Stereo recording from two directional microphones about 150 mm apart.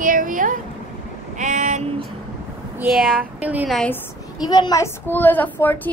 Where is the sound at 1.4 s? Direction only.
55° right (ahead or behind).